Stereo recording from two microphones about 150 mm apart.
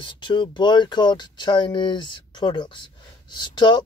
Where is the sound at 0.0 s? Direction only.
30° left (ahead or behind).